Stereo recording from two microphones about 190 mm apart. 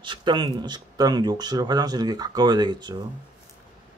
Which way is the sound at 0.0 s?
25° right (ahead or behind).